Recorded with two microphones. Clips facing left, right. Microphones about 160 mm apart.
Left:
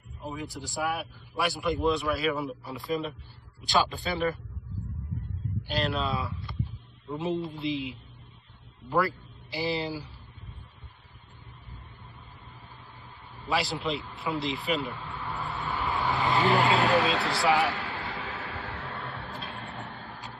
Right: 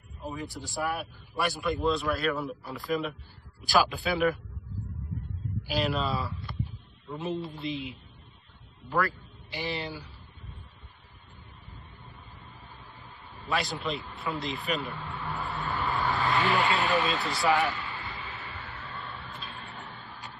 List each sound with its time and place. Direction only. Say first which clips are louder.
0.3 s speech: left 1 dB; centre (ahead or behind)
1.6 s speech: left 1 dB; 20° left (ahead or behind)
1.9 s speech: even; centre (ahead or behind)
5.7 s speech: right 1 dB; centre (ahead or behind)
7.1 s speech: left 3 dB; 20° left (ahead or behind)
7.3 s speech: left 3 dB; centre (ahead or behind)
7.6 s a man's voice: left 3 dB; 20° left (ahead or behind)
9.5 s speech: left 4 dB; 35° left (ahead or behind)
14.2 s speech: left 2 dB; 20° left (ahead or behind)
15.1 s vehicle: right 1 dB; centre (ahead or behind)
16.1 s vehicle: left 3 dB; 20° left (ahead or behind)
16.5 s speech: left 3 dB; 40° left (ahead or behind)
16.8 s a sound: left 3 dB; 75° left (ahead or behind)
19.3 s a sound: left 4 dB; 60° left (ahead or behind)